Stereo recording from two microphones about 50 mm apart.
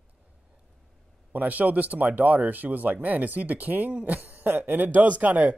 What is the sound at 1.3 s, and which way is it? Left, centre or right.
Speech, right.